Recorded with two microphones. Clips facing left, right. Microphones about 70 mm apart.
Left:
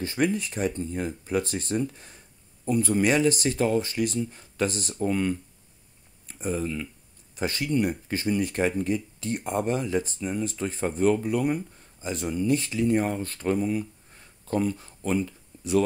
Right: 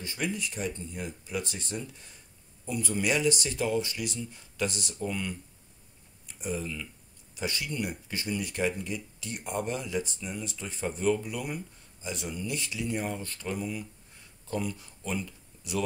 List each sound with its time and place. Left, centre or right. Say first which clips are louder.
0.0 s speech: left 8 dB; left